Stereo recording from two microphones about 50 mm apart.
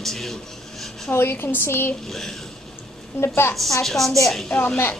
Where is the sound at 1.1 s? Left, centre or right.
Left.